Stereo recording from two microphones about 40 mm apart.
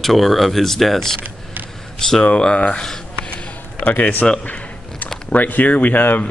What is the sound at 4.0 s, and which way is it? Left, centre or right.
Speech, left.